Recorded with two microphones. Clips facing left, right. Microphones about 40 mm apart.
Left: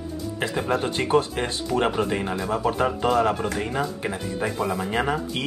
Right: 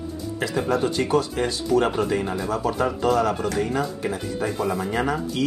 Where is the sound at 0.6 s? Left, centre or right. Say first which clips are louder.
Right 2 dB; left.